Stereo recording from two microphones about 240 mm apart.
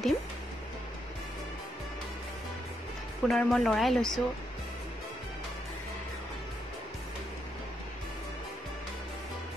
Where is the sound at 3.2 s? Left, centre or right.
Centre.